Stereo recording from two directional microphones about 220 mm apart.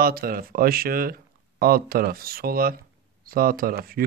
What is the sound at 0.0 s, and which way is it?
Speech, 40° right (ahead or behind).